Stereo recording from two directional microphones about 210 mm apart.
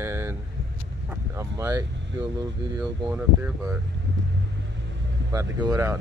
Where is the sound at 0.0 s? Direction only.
10° right (ahead or behind).